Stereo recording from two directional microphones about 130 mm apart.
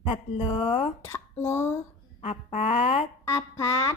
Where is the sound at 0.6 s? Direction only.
40° left (ahead or behind).